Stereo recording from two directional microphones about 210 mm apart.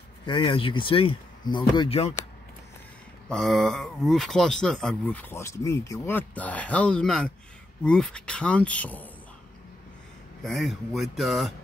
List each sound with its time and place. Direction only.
0.3 s speech: 25° left (ahead or behind)
3.3 s speech: centre (ahead or behind)
10.4 s speech: centre (ahead or behind)